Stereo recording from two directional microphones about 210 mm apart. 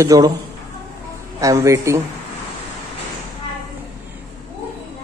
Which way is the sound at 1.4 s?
15° right (ahead or behind).